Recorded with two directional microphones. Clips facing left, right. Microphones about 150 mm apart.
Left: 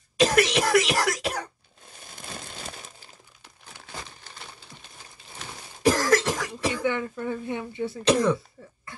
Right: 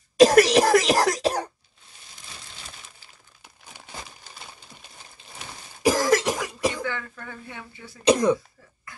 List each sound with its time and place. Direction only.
0.2 s cough: 40° right (ahead or behind)
2.1 s a sound: 50° left (ahead or behind)
3.4 s crumpling: 15° right (ahead or behind)
5.8 s cough: 10° right (ahead or behind)
6.7 s speech: 20° left (ahead or behind)
8.0 s speech: 15° right (ahead or behind)